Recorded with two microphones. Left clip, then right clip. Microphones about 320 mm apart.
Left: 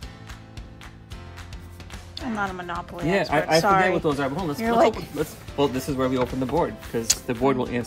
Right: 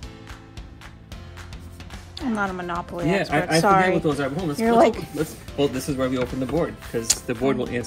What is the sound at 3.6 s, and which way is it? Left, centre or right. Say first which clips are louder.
Speech: right 1 dB; centre.